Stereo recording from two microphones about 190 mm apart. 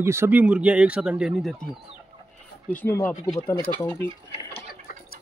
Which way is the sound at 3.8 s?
10° left (ahead or behind).